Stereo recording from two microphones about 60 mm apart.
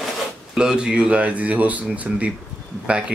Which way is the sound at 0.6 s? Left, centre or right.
Centre.